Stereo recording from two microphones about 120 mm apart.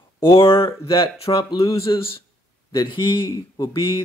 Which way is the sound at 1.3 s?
30° left (ahead or behind).